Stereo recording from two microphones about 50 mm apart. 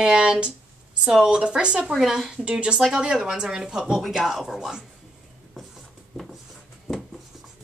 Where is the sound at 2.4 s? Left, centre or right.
Centre.